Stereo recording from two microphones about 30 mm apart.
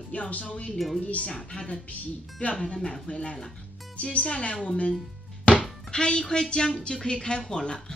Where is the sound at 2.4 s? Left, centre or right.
Left.